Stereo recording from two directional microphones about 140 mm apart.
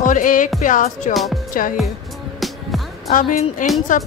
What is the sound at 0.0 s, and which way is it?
Music, 70° left (ahead or behind).